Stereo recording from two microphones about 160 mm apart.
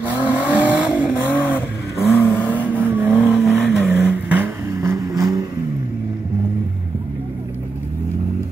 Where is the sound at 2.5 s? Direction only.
10° right (ahead or behind).